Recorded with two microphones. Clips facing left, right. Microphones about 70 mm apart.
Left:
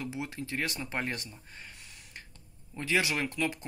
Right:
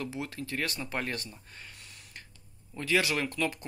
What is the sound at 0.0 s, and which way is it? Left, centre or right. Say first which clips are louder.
Speech: even; centre.